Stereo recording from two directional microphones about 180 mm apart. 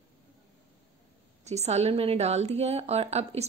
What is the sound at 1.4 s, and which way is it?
A woman's voice, 40° right (ahead or behind).